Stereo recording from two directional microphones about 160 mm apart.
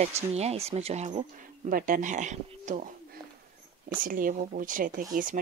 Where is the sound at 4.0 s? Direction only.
60° right (ahead or behind).